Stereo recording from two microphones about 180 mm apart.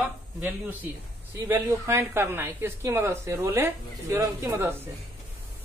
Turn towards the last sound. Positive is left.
turn(degrees=-15)  # may be behind; listen again after turning